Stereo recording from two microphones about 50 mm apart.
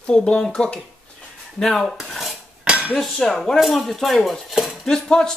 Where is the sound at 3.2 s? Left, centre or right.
Centre.